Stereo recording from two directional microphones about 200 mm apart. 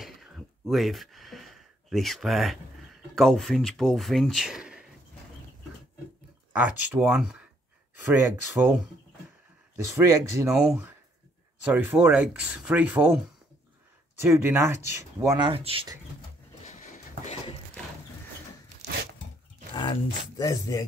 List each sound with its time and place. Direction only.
0.0 s a sound: centre (ahead or behind)
3.2 s speech: centre (ahead or behind)
6.5 s speech: 10° right (ahead or behind)
9.8 s speech: 15° right (ahead or behind)
10.5 s speech: 5° right (ahead or behind)
14.2 s speech: 10° right (ahead or behind)
15.5 s speech: 25° right (ahead or behind)
16.6 s a sound: 35° left (ahead or behind)
19.7 s speech: 20° left (ahead or behind)